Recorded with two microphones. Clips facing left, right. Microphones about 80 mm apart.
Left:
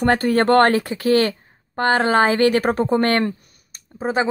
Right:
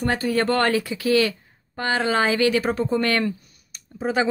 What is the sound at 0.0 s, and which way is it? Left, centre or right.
A woman's voice, left.